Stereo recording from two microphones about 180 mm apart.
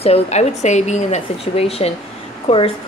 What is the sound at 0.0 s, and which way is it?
A woman's voice, 35° left (ahead or behind).